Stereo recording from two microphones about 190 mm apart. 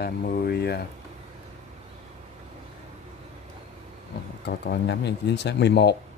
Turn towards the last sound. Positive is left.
turn(degrees=60)  # may be behind; listen again after turning